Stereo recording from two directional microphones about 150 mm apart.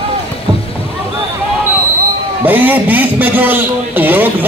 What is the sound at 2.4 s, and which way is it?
A man's voice, 10° right (ahead or behind).